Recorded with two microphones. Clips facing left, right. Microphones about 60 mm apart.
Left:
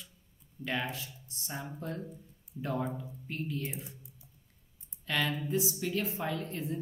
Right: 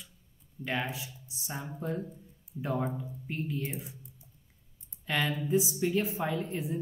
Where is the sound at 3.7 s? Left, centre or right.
Centre.